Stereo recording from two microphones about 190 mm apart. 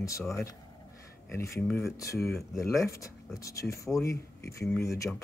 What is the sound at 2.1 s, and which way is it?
Speech, centre (ahead or behind).